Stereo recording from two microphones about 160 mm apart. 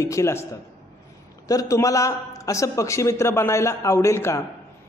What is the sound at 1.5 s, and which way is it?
A man's voice, 20° left (ahead or behind).